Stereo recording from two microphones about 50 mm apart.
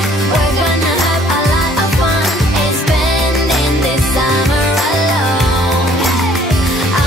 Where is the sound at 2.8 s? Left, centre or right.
Centre.